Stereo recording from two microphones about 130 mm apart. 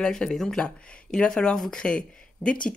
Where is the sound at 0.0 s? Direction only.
5° left (ahead or behind).